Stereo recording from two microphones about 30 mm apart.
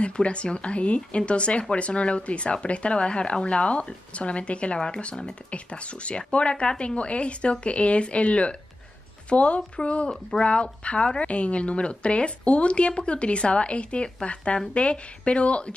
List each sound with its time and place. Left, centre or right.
0.0 s speech: left
4.7 s speech: left
5.5 s speech: left
6.5 s speech: left
7.0 s speech: left